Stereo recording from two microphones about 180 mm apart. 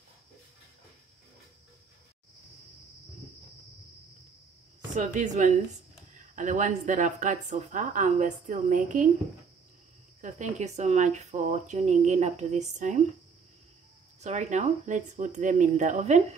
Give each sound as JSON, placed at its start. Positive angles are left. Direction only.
{"t": 4.9, "sound": "a woman's voice", "side_deg": -45}
{"t": 10.2, "sound": "speech", "side_deg": -40}
{"t": 14.2, "sound": "a woman's voice", "side_deg": -40}